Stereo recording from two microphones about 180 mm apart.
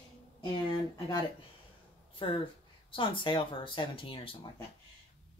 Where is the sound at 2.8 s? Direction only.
30° left (ahead or behind).